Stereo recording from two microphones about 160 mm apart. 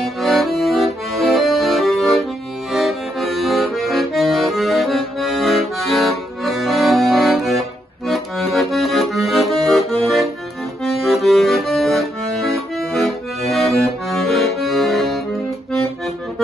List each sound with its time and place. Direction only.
0.0 s accordion: centre (ahead or behind)